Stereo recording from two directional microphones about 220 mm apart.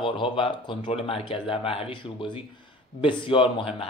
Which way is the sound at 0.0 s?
20° left (ahead or behind).